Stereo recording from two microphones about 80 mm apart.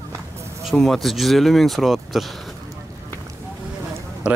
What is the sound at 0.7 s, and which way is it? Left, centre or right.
Speech, centre.